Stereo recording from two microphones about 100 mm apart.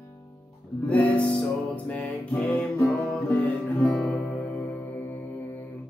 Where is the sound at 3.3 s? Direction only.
15° left (ahead or behind).